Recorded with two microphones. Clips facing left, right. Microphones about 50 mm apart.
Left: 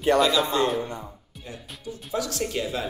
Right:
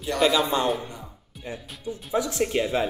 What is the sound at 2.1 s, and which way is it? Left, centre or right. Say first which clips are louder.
Speech: right 4 dB; right.